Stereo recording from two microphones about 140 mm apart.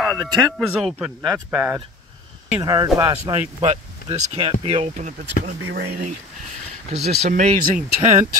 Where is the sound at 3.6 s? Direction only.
50° right (ahead or behind).